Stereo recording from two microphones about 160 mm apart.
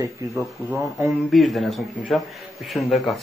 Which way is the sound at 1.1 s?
Centre (ahead or behind).